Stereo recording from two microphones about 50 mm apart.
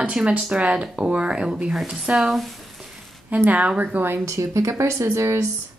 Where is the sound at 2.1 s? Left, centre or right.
Centre.